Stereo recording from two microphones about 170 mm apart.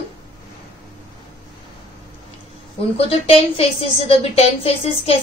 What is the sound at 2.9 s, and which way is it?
A woman's voice, 35° left (ahead or behind).